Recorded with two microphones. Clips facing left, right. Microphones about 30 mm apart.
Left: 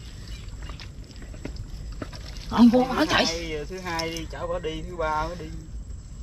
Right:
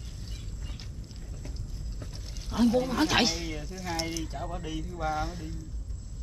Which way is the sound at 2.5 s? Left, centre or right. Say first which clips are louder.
Left 7 dB; left.